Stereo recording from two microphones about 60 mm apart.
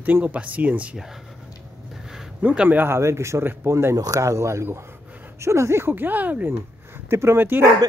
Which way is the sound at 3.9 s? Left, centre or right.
Right.